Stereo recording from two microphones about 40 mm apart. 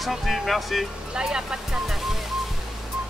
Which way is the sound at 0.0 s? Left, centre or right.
Centre.